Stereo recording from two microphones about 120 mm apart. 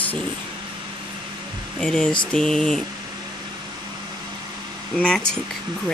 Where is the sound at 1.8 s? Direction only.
5° left (ahead or behind).